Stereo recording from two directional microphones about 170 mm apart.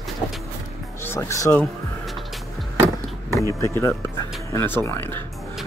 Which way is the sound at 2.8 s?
15° left (ahead or behind).